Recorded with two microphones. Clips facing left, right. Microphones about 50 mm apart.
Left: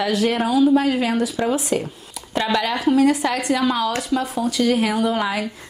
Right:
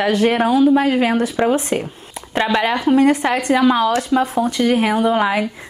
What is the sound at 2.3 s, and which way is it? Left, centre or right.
Speech, right.